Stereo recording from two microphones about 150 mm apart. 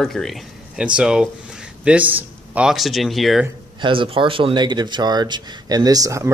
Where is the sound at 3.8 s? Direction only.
35° right (ahead or behind).